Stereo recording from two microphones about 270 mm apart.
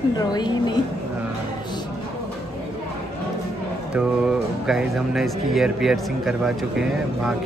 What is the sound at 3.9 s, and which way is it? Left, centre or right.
Speech, centre.